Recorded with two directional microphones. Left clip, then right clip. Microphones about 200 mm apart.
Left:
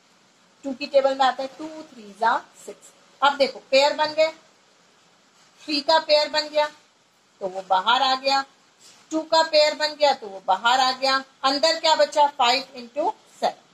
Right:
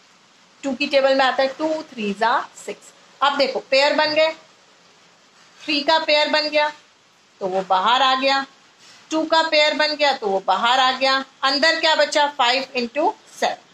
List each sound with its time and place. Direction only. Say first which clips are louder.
0.6 s a woman's voice: right 2 dB; 45° right (ahead or behind)
5.7 s a woman's voice: right 2 dB; 40° right (ahead or behind)